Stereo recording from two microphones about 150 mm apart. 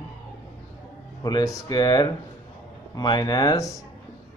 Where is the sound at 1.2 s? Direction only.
25° left (ahead or behind).